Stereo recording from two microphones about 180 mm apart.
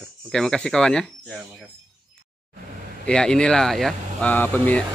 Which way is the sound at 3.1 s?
5° left (ahead or behind).